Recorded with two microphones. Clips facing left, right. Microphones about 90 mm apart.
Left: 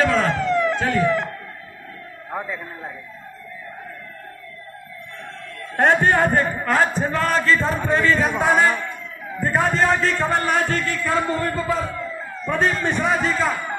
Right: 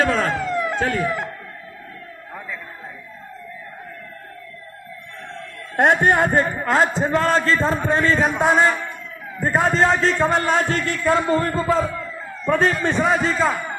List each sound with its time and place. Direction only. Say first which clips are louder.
0.0 s speech: left 1 dB; 40° right (ahead or behind)
0.3 s police car: left 3 dB; 10° right (ahead or behind)
1.0 s speech: left 4 dB; 5° right (ahead or behind)
5.9 s speech: even; 20° right (ahead or behind)
12.4 s a man's voice: right 3 dB; 35° right (ahead or behind)
12.8 s speech: right 2 dB; 25° right (ahead or behind)